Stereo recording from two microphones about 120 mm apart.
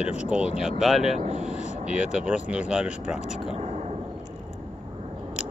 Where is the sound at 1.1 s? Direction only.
70° right (ahead or behind).